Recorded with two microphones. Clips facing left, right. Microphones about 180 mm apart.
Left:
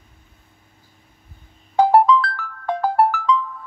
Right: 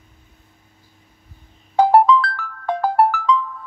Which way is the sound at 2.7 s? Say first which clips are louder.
Right 1 dB; 70° right (ahead or behind).